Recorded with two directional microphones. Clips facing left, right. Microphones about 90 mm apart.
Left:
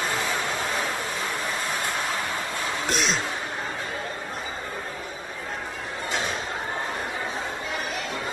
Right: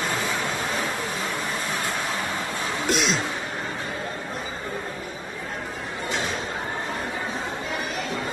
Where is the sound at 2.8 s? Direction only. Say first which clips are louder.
Right 3 dB; 40° left (ahead or behind).